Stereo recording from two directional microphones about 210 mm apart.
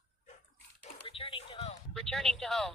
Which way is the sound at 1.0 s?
25° left (ahead or behind).